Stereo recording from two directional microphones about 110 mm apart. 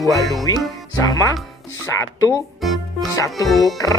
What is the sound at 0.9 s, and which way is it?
Speech, 35° left (ahead or behind).